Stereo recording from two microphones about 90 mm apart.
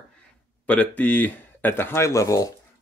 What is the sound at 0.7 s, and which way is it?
Speech, 15° left (ahead or behind).